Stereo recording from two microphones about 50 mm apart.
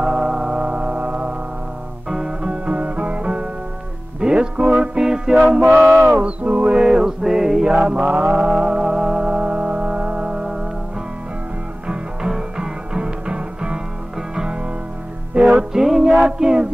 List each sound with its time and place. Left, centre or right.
0.0 s music: centre
2.0 s music: centre
5.6 s a sound: right
5.9 s a sound: right
6.2 s mantra: right
7.8 s music: right
11.9 s music: centre
15.7 s music: centre